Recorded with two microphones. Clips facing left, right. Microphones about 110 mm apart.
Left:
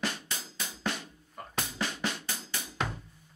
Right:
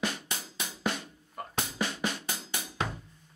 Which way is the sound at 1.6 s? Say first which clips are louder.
Right 1 dB; 15° right (ahead or behind).